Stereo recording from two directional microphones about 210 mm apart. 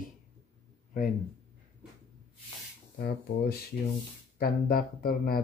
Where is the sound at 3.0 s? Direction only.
45° left (ahead or behind).